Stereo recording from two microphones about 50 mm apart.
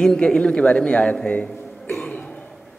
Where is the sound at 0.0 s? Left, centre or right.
Centre.